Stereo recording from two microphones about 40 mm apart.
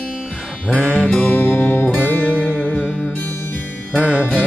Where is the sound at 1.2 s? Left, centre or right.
Left.